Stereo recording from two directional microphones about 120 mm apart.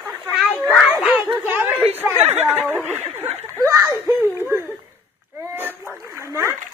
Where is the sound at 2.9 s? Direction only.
20° right (ahead or behind).